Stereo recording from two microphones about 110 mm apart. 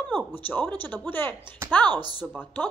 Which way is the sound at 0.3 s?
20° left (ahead or behind).